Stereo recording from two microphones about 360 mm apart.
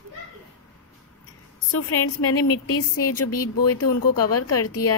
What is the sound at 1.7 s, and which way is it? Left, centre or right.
Speech, left.